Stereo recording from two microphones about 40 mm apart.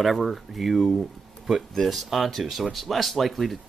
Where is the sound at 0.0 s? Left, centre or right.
Centre.